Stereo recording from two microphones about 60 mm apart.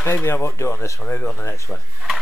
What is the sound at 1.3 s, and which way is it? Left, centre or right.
Speech, left.